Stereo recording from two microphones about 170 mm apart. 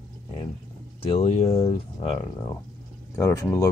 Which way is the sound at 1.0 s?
35° left (ahead or behind).